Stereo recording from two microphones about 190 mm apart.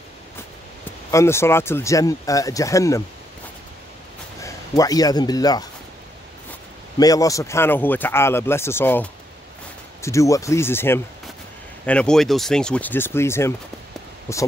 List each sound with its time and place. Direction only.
1.1 s speech: 15° left (ahead or behind)
4.4 s speech: 15° left (ahead or behind)
7.0 s speech: 20° left (ahead or behind)